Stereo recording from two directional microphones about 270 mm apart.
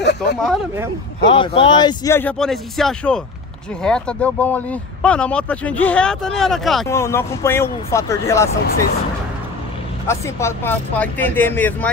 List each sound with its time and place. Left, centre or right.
0.0 s speech: left
1.2 s speech: centre
10.0 s speech: centre